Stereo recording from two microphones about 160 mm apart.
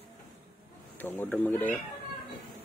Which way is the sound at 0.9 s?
10° left (ahead or behind).